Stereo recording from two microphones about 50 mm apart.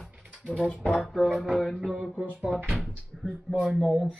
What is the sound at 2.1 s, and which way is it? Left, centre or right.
Speech, right.